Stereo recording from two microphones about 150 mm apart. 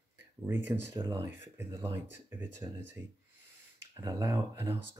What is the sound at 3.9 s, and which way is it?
Speech, 25° right (ahead or behind).